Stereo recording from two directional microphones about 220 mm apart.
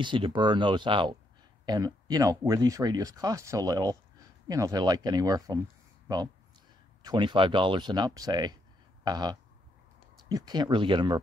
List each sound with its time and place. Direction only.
0.0 s speech: 20° right (ahead or behind)